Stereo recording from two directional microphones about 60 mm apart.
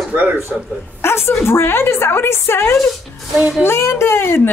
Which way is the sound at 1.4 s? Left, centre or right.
Left.